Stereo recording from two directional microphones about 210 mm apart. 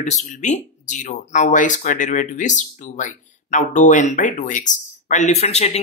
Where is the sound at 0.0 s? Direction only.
35° left (ahead or behind).